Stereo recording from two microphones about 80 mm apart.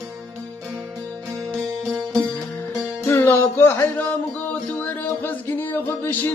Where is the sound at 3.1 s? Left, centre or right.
Left.